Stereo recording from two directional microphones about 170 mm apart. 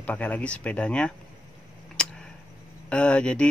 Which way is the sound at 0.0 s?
10° left (ahead or behind).